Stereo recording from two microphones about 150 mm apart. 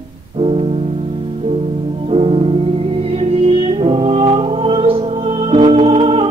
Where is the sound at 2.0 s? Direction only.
40° right (ahead or behind).